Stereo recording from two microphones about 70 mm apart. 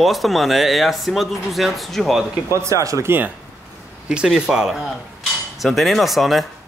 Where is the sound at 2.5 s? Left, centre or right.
Right.